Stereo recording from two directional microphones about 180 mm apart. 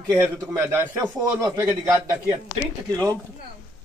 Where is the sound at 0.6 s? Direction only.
15° right (ahead or behind).